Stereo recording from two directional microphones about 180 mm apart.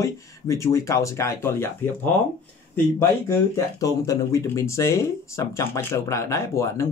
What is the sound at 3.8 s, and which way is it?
Speech, 20° left (ahead or behind).